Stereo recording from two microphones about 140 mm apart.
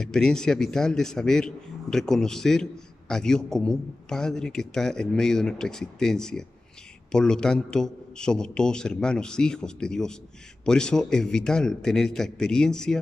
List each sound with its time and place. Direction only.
0.0 s a man's voice: 5° left (ahead or behind)